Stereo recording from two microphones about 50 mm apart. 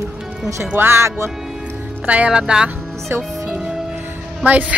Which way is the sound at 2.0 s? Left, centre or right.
Right.